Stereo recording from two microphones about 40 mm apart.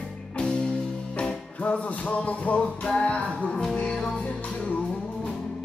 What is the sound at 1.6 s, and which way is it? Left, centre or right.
Music, left.